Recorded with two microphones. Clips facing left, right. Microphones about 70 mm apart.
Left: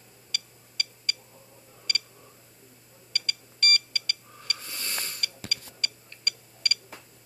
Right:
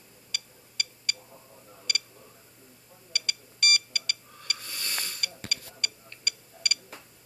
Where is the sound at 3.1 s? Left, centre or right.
Centre.